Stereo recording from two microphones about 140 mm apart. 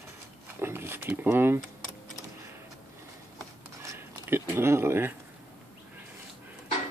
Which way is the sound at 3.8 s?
20° right (ahead or behind).